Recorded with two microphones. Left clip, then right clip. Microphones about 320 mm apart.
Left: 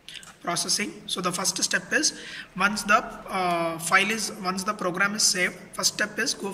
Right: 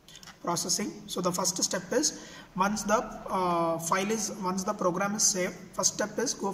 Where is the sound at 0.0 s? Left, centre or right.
Right.